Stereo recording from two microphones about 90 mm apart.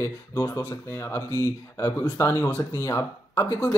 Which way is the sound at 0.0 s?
35° left (ahead or behind).